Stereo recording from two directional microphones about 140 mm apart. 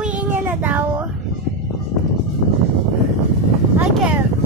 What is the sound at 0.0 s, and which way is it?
Child singing, 10° right (ahead or behind).